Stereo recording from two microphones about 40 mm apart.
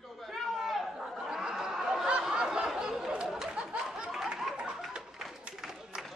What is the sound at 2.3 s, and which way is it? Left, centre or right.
Snicker, centre.